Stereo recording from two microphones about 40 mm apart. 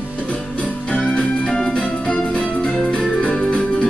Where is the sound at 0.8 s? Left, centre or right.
Left.